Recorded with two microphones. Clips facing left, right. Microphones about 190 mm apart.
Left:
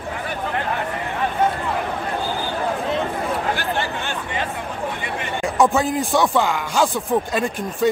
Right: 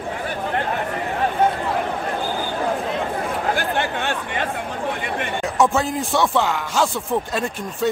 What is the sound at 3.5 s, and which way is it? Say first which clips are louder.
Chatter: right 2 dB; 60° right (ahead or behind).